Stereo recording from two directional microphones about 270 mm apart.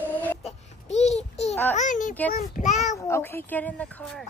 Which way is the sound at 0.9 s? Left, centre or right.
Left.